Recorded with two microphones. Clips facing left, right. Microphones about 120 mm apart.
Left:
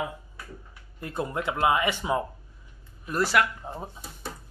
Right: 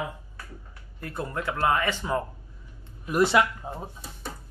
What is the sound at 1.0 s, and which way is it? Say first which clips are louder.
Speech: left 2 dB; 20° left (ahead or behind).